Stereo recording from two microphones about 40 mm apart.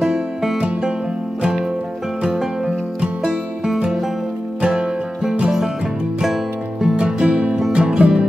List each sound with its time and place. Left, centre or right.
0.0 s music: centre
4.6 s music: centre
7.0 s music: right